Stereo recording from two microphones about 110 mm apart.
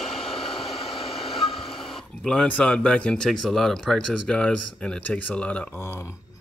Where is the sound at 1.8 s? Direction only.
Centre (ahead or behind).